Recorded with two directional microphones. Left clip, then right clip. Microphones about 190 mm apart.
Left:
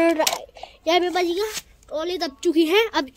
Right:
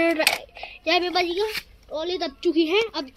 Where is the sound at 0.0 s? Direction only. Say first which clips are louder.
Left 1 dB; 5° left (ahead or behind); by 3.1 s 30° left (ahead or behind).